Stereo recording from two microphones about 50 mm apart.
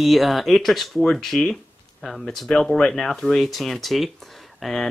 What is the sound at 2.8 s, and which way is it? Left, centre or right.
Speech, centre.